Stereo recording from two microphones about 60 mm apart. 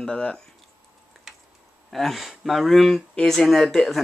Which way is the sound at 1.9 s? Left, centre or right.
Centre.